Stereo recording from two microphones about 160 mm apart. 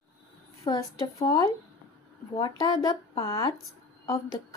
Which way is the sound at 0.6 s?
20° left (ahead or behind).